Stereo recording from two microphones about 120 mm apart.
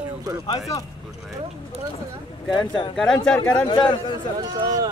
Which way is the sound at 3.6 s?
40° left (ahead or behind).